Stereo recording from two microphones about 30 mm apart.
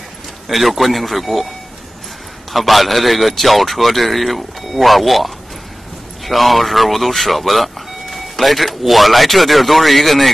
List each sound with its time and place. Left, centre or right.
0.5 s speech: centre
2.5 s speech: centre